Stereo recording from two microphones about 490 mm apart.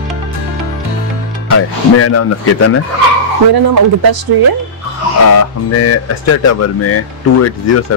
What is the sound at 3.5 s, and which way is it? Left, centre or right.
Speech, right.